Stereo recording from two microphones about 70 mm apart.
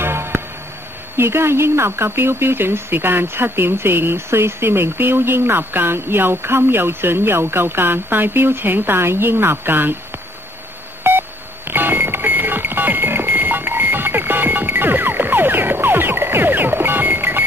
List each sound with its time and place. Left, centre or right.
0.0 s music: right
1.1 s speech: right
11.1 s music: right